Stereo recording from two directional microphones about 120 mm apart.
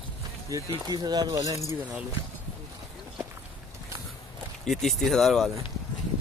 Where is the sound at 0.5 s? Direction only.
30° right (ahead or behind).